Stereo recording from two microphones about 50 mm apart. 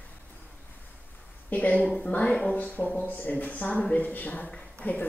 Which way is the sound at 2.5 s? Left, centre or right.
Left.